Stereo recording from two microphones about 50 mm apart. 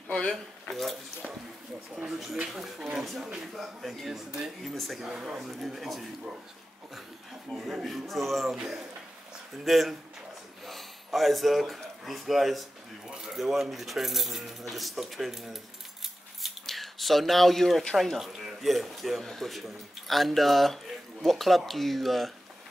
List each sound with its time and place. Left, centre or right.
0.1 s speech: centre
2.0 s speech: centre
5.1 s speech: centre
5.4 s speech: centre
7.5 s speech: centre
10.6 s a sound: centre
13.1 s speech: centre
16.4 s a sound: centre
17.9 s speech: centre